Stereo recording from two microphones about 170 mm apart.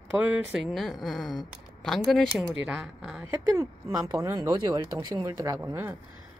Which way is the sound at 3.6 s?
20° right (ahead or behind).